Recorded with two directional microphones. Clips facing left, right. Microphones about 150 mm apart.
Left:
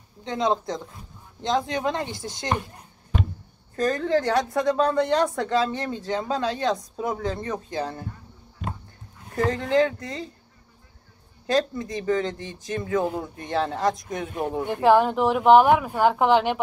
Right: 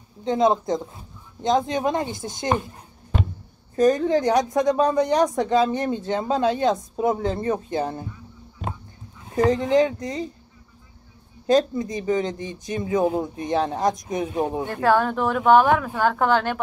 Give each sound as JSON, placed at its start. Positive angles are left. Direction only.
{"t": 0.3, "sound": "speech", "side_deg": -25}
{"t": 3.7, "sound": "speech", "side_deg": -20}
{"t": 9.3, "sound": "speech", "side_deg": -20}
{"t": 11.5, "sound": "speech", "side_deg": -20}
{"t": 14.7, "sound": "speech", "side_deg": 15}